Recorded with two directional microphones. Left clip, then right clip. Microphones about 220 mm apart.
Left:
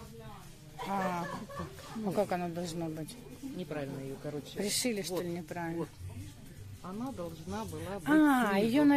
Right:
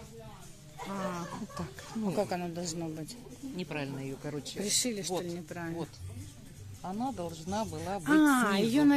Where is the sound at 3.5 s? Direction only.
60° right (ahead or behind).